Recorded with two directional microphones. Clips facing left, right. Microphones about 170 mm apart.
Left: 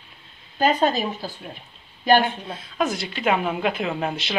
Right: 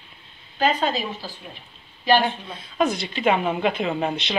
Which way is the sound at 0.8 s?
45° left (ahead or behind).